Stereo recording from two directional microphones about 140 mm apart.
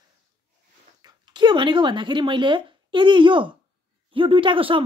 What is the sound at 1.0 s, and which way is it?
Speech, 30° right (ahead or behind).